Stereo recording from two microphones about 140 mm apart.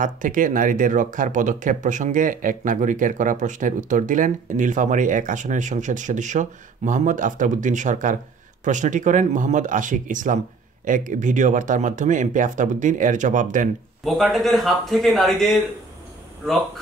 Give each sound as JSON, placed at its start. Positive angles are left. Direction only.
{"t": 0.0, "sound": "speech", "side_deg": -70}
{"t": 14.0, "sound": "speech", "side_deg": 0}